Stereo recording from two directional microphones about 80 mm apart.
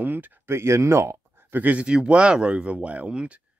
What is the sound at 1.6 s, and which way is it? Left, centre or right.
Speech, centre.